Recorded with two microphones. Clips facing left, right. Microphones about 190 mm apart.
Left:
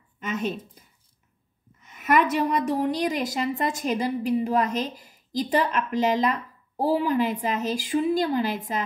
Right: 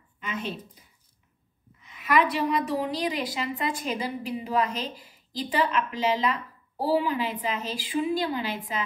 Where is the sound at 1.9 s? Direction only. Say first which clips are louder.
Left 2 dB; 45° left (ahead or behind).